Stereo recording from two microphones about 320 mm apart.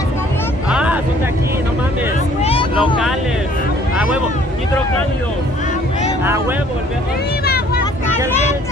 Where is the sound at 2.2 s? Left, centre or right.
Centre.